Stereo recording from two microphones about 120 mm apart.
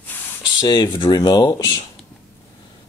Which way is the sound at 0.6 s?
35° left (ahead or behind).